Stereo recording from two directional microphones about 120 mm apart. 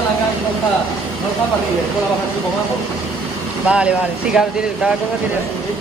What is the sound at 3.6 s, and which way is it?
Speech, 10° right (ahead or behind).